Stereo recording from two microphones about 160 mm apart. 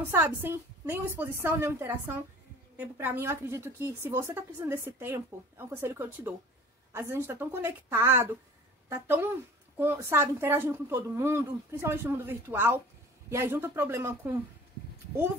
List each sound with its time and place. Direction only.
0.1 s a woman's voice: 15° right (ahead or behind)